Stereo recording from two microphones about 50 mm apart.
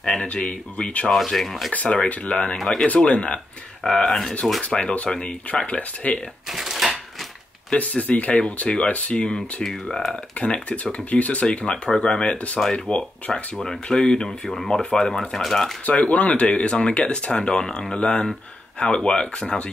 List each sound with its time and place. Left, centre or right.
0.2 s speech: left
1.1 s rub: centre
1.7 s speech: left
2.5 s speech: centre
3.8 s speech: centre
4.6 s speech: left
6.5 s typewriter: centre
7.7 s speech: left
9.7 s rub: centre
10.4 s speech: left
14.5 s rub: centre
15.0 s speech: centre
15.8 s speech: left